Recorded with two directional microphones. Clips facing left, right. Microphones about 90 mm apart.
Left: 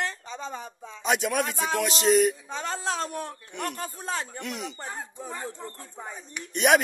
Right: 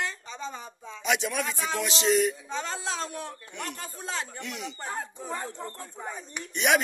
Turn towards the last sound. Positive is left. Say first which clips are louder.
# left 4 dB
turn(degrees=45)  # may be behind; listen again after turning